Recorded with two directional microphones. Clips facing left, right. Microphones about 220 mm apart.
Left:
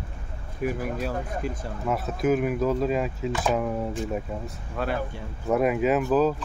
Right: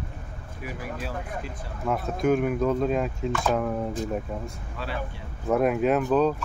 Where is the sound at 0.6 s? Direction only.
50° left (ahead or behind).